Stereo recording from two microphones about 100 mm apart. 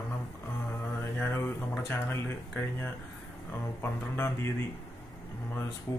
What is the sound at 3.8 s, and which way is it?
Speech, 25° left (ahead or behind).